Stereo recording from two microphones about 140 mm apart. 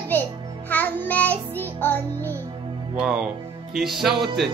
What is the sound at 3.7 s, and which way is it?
Music, centre (ahead or behind).